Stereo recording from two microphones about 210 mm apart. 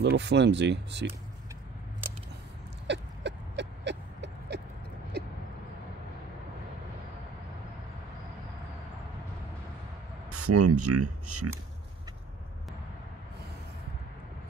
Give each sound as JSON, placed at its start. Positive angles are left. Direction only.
{"t": 0.0, "sound": "speech", "side_deg": -55}
{"t": 2.9, "sound": "a sound", "side_deg": -55}
{"t": 10.3, "sound": "speech", "side_deg": -90}